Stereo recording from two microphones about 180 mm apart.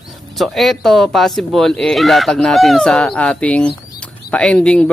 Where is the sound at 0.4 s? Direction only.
Centre (ahead or behind).